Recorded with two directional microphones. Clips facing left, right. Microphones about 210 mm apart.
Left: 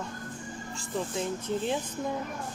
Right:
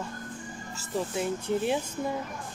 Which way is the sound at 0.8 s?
10° right (ahead or behind).